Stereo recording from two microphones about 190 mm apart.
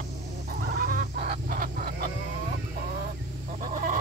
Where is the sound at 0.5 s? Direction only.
50° right (ahead or behind).